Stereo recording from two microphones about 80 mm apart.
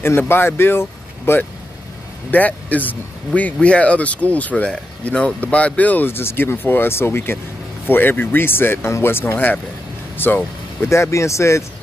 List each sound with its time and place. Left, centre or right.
0.2 s speech: left